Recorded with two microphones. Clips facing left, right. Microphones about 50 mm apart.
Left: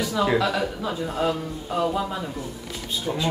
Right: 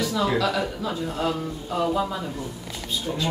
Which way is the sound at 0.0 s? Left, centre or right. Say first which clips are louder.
Left 1 dB; centre.